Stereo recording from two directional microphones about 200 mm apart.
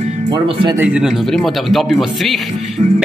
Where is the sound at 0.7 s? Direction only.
5° right (ahead or behind).